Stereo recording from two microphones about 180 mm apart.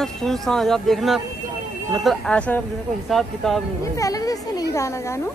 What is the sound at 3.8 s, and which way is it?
Speech, 20° left (ahead or behind).